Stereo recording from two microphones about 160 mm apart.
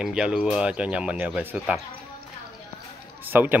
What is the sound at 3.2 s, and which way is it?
Speech, 10° right (ahead or behind).